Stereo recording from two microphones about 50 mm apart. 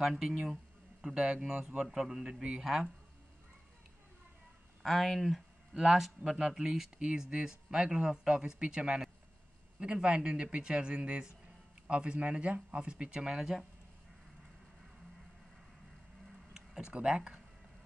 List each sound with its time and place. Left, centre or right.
0.0 s speech: centre
4.8 s speech: centre
7.0 s speech: right
16.5 s tick-tock: centre
16.9 s speech: centre